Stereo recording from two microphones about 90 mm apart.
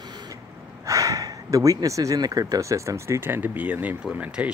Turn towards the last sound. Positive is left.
turn(degrees=-15)  # may be behind; listen again after turning